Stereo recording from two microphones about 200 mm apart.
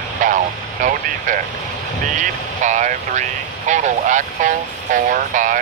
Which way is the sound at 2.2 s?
40° right (ahead or behind).